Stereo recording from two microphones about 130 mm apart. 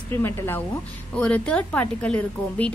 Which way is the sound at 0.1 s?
15° left (ahead or behind).